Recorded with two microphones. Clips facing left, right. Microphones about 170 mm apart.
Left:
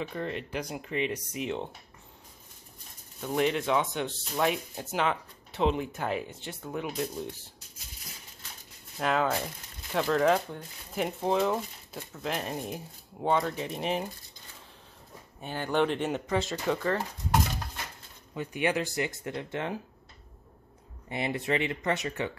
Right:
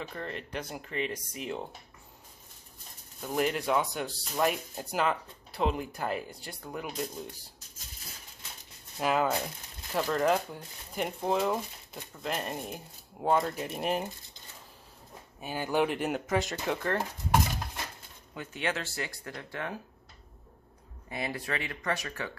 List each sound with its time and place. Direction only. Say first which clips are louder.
0.0 s speech: left 4 dB; centre (ahead or behind)
3.2 s speech: left 2 dB; 5° right (ahead or behind)
9.0 s speech: even; 5° right (ahead or behind)
15.4 s speech: left 1 dB; 10° right (ahead or behind)
16.3 s speech: left 2 dB; 15° right (ahead or behind)
18.3 s speech: left 5 dB; 10° left (ahead or behind)
21.1 s speech: left 5 dB; 25° left (ahead or behind)